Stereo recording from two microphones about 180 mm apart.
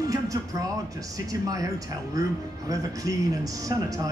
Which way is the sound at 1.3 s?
20° right (ahead or behind).